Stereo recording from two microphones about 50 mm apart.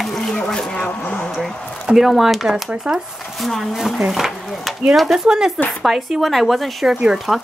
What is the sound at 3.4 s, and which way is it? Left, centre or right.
Speech, centre.